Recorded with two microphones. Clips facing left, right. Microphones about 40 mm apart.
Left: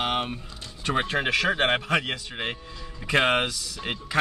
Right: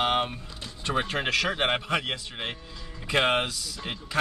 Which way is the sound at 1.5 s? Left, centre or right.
Centre.